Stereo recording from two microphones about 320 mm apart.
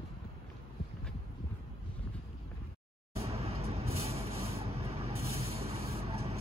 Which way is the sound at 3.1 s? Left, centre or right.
Centre.